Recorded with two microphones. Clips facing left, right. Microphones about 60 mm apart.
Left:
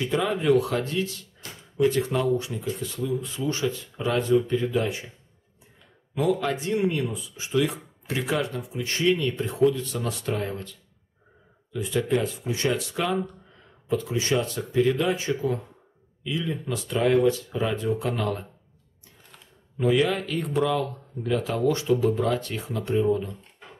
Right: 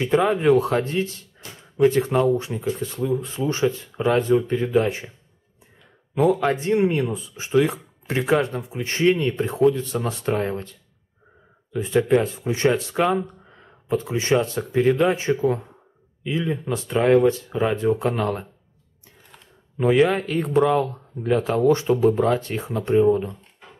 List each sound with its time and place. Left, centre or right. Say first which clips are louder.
0.0 s speech: right 6 dB; right
6.1 s speech: right 5 dB; right
19.8 s speech: right 5 dB; right